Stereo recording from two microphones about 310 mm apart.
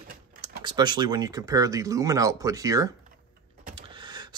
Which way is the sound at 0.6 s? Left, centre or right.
Centre.